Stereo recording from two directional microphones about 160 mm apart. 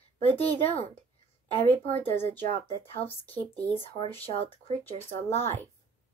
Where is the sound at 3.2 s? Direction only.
10° left (ahead or behind).